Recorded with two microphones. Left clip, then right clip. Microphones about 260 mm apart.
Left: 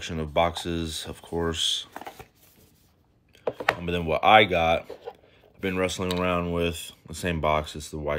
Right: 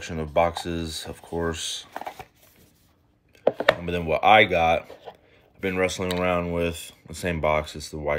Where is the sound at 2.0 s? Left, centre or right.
Centre.